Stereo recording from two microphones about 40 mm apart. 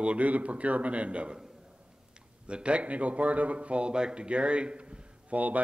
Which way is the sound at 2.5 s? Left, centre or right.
Right.